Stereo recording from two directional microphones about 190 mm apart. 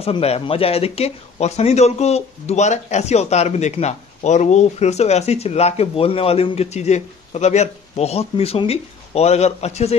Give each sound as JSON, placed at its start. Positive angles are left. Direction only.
{"t": 0.0, "sound": "speech", "side_deg": 30}